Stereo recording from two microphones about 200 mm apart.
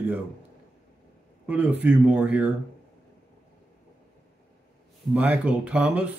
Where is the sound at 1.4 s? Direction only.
5° right (ahead or behind).